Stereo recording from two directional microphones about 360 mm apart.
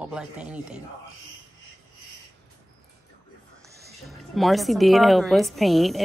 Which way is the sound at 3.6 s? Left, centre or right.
Right.